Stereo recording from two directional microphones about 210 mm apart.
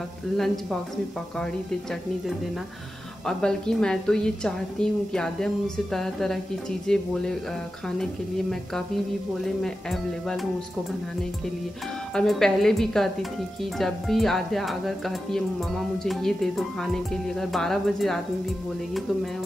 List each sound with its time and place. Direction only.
1.4 s speech: centre (ahead or behind)
12.1 s speech: 5° left (ahead or behind)